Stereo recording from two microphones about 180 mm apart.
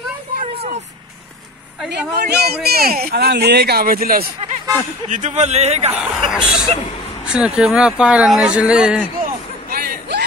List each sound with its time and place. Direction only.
0.4 s vehicle: 35° right (ahead or behind)
1.9 s a man's voice: 65° right (ahead or behind)
5.1 s a man's voice: 40° right (ahead or behind)
5.9 s speech: 5° right (ahead or behind)
9.2 s a sound: 55° right (ahead or behind)